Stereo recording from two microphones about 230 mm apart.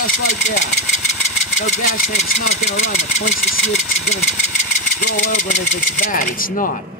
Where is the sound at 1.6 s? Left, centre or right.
Left.